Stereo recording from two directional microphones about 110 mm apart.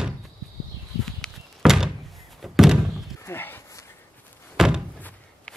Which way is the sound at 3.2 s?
20° left (ahead or behind).